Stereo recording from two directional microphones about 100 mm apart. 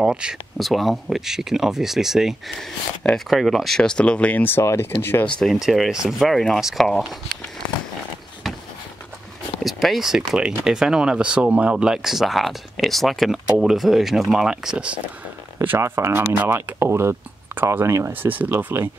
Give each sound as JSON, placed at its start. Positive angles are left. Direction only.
{"t": 0.0, "sound": "speech", "side_deg": -10}
{"t": 5.3, "sound": "speech", "side_deg": 0}
{"t": 9.6, "sound": "speech", "side_deg": 0}
{"t": 15.6, "sound": "speech", "side_deg": -20}